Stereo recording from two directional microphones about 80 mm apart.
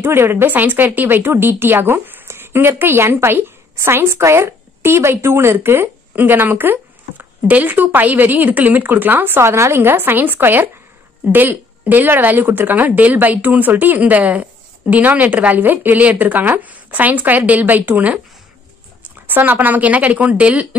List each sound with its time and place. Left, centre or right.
0.0 s a woman's voice: right
19.2 s a woman's voice: right